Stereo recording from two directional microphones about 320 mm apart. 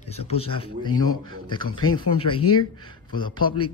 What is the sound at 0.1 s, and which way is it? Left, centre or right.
Speech, centre.